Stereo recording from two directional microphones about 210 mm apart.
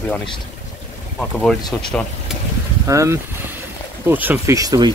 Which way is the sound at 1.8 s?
5° left (ahead or behind).